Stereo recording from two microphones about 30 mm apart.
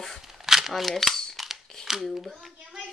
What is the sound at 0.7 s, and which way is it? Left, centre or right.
Speech, centre.